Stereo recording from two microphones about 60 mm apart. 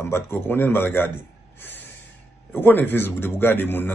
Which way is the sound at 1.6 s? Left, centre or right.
Left.